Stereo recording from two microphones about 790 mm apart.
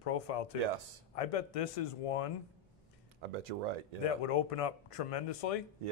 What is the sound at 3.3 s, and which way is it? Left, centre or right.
Speech, right.